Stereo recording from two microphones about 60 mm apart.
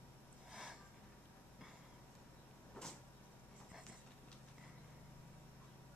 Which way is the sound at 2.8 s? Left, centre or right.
Centre.